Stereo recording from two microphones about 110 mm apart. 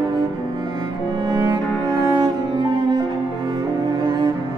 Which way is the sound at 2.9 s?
40° right (ahead or behind).